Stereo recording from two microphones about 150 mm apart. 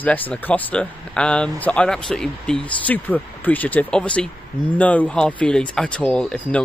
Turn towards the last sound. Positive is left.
turn(degrees=5)  # may be behind; listen again after turning